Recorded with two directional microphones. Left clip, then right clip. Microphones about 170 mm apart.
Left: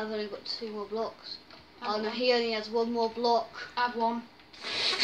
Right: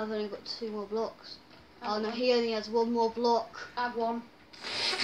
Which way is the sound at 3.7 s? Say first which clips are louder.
Left 3 dB; 40° left (ahead or behind).